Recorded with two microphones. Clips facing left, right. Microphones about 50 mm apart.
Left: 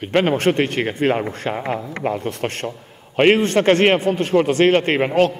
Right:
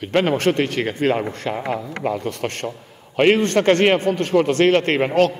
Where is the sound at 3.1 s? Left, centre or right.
Centre.